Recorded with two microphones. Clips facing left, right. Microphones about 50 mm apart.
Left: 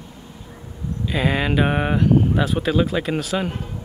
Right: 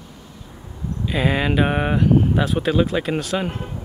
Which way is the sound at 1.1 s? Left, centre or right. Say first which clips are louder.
Right 1 dB; centre.